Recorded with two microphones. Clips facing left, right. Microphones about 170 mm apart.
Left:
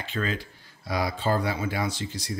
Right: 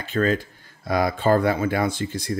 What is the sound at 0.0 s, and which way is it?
Speech, 45° right (ahead or behind).